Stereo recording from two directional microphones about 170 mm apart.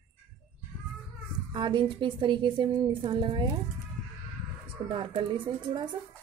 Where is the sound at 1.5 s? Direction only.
25° right (ahead or behind).